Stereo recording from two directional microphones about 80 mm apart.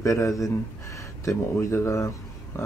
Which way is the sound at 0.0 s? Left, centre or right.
Left.